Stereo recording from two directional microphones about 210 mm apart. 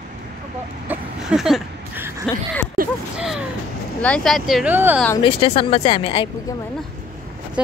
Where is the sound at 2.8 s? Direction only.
45° right (ahead or behind).